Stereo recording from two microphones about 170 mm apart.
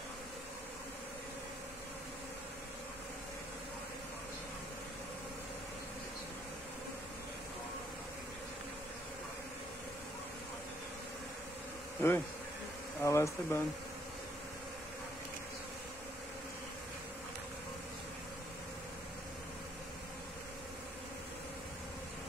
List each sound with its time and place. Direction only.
12.0 s bee: 15° left (ahead or behind)
13.0 s speech: 15° left (ahead or behind)